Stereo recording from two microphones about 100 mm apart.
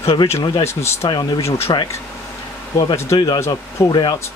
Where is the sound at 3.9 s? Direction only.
45° left (ahead or behind).